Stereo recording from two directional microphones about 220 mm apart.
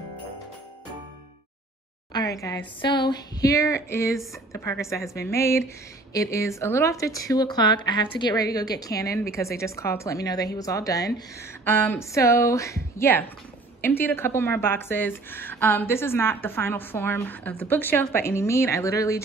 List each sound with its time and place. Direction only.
2.1 s a woman's voice: 15° left (ahead or behind)